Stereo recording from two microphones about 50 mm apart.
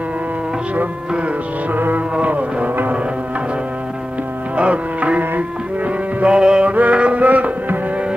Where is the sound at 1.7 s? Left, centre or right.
Right.